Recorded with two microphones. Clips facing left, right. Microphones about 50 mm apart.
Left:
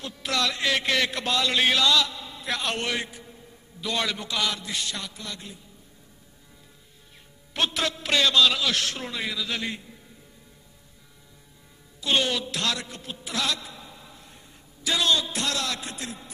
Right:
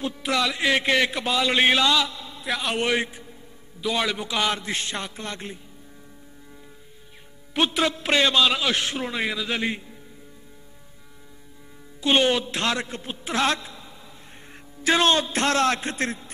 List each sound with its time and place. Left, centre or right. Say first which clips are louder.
0.0 s a man's voice: right 3 dB; centre
1.5 s a man's voice: right 3 dB; right
2.4 s a man's voice: right 2 dB; centre
2.8 s a man's voice: right 6 dB; centre
4.4 s a sound: right 4 dB; right
7.5 s a man's voice: right 4 dB; centre
12.0 s a man's voice: right 5 dB; right